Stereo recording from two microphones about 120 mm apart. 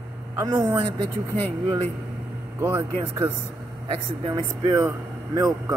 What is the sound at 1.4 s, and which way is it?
Speech, 15° left (ahead or behind).